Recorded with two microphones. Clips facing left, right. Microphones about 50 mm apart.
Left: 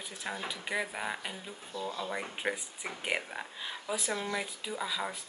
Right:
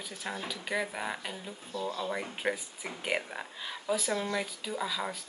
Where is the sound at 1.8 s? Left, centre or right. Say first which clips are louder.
Right 2 dB; centre.